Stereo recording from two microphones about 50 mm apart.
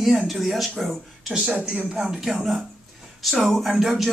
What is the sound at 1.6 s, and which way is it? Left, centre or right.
Speech, right.